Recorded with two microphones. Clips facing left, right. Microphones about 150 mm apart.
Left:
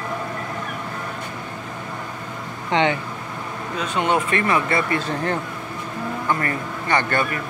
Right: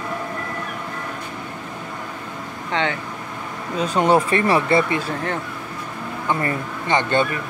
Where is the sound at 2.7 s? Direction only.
20° left (ahead or behind).